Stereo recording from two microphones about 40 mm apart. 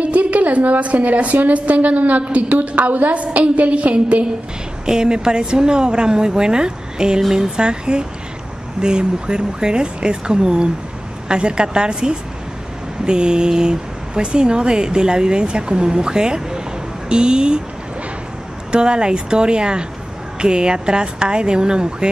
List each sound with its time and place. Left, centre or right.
0.0 s a woman's voice: right
4.8 s speech: centre
18.7 s speech: right